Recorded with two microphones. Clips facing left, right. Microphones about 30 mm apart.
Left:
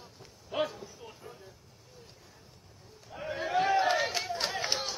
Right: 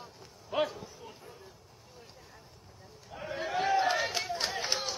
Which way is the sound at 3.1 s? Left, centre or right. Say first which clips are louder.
Left 3 dB; centre.